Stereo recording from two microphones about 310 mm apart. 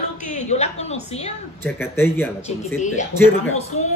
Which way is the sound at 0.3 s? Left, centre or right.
Left.